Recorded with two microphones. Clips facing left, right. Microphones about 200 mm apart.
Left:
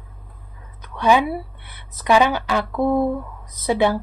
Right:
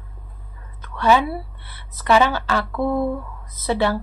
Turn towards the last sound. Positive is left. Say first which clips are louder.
# left 2 dB
turn(degrees=15)  # may be behind; listen again after turning